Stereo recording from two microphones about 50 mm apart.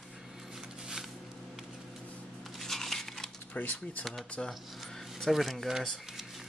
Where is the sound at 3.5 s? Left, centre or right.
Left.